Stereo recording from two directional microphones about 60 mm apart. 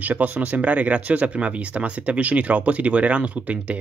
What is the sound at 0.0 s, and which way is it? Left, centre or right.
Speech, right.